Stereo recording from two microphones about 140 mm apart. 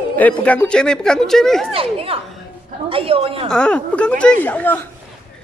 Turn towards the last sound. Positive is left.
turn(degrees=10)  # may be behind; listen again after turning